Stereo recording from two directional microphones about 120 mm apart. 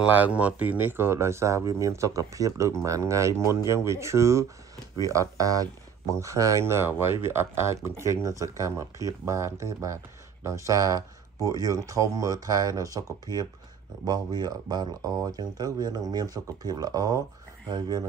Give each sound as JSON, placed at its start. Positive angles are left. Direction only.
{"t": 0.1, "sound": "speech", "side_deg": -10}